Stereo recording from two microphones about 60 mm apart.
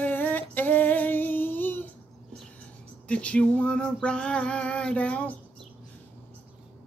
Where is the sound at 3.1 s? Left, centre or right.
Centre.